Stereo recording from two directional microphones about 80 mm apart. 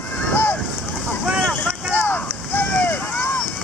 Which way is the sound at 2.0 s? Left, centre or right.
Left.